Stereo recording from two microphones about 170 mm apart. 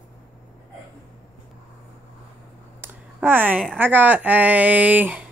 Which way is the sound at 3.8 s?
10° right (ahead or behind).